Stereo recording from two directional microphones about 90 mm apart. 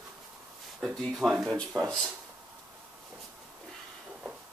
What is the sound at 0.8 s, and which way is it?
Speech, 5° left (ahead or behind).